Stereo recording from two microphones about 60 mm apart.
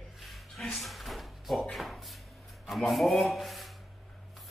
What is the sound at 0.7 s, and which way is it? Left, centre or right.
Drawer open or close, centre.